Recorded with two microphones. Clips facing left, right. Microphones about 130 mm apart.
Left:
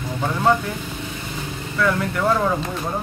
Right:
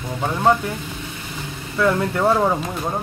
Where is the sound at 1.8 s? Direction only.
25° right (ahead or behind).